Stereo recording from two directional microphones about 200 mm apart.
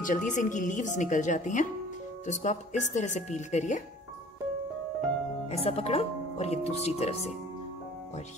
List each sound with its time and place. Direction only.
0.0 s speech: 40° left (ahead or behind)
5.5 s speech: 30° left (ahead or behind)